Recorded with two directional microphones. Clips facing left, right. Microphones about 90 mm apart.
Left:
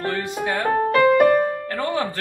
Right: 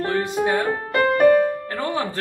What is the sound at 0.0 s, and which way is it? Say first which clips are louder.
Speech: right 3 dB; 20° right (ahead or behind).